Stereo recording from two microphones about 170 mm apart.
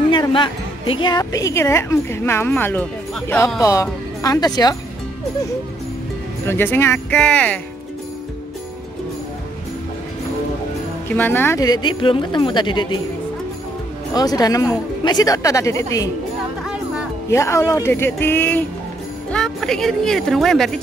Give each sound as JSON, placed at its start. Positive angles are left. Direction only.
{"t": 0.1, "sound": "a woman's voice", "side_deg": 30}
{"t": 6.4, "sound": "a woman's voice", "side_deg": 15}
{"t": 11.1, "sound": "a woman's voice", "side_deg": 10}
{"t": 14.1, "sound": "a woman's voice", "side_deg": 20}
{"t": 17.3, "sound": "a woman's voice", "side_deg": 15}